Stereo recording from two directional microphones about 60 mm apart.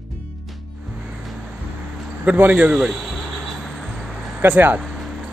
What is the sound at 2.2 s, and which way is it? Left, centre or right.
Speech, right.